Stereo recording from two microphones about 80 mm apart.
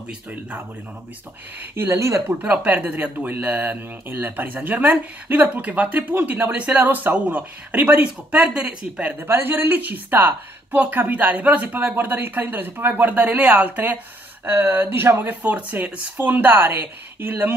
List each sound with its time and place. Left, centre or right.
1.6 s speech: right
2.4 s speech: centre
9.2 s speech: right